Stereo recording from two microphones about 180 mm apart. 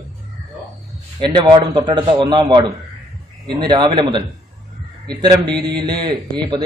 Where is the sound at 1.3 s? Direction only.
25° right (ahead or behind).